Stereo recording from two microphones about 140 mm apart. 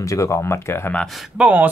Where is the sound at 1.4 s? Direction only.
10° right (ahead or behind).